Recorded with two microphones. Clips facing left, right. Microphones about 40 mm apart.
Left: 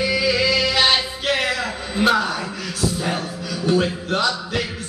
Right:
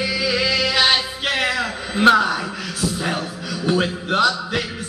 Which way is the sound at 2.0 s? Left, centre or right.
Centre.